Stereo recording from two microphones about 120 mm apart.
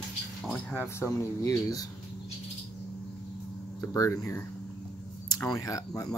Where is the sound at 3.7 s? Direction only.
25° left (ahead or behind).